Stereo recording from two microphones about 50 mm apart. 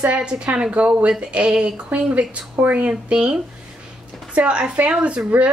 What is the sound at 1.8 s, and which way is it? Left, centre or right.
Speech, right.